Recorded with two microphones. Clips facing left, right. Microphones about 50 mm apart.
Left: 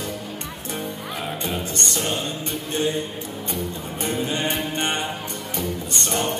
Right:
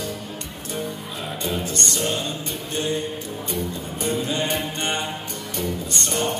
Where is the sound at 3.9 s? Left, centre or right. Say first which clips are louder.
Right 1 dB; left.